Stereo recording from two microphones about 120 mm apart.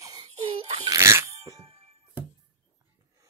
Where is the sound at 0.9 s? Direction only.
25° right (ahead or behind).